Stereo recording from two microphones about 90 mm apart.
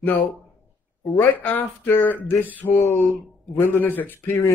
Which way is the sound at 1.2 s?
20° left (ahead or behind).